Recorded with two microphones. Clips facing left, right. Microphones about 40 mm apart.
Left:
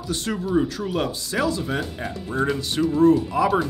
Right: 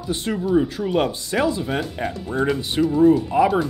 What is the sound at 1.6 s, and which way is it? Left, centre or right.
Speech, centre.